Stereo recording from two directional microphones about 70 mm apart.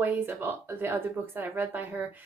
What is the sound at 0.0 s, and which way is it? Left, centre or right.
A woman's voice, right.